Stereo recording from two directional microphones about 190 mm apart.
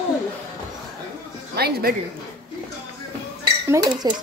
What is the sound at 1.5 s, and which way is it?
Speech, 55° right (ahead or behind).